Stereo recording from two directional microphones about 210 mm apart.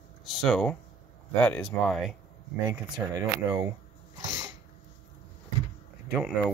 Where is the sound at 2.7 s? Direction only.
15° right (ahead or behind).